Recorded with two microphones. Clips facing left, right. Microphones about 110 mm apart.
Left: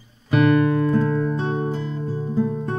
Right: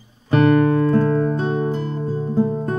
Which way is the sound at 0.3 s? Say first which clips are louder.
Right 2 dB; 35° right (ahead or behind).